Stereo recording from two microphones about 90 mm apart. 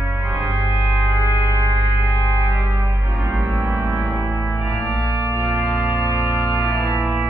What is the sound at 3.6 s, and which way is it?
Music, 25° right (ahead or behind).